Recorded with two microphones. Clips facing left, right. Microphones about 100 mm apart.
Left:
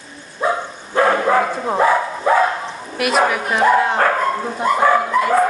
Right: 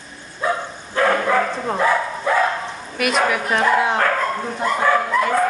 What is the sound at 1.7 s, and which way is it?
Dog, 25° left (ahead or behind).